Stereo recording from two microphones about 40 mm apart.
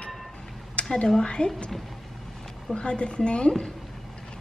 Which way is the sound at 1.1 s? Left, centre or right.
Left.